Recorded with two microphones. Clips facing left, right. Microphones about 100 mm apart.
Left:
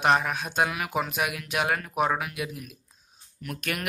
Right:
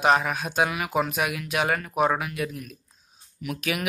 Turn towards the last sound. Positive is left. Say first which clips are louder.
# right 4 dB
turn(degrees=-5)  # may be behind; listen again after turning